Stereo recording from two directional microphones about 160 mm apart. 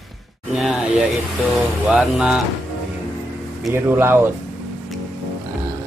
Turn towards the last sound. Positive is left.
turn(degrees=-15)  # may be behind; listen again after turning